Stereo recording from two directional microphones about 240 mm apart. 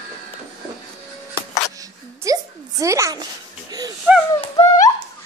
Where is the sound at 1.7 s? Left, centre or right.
Centre.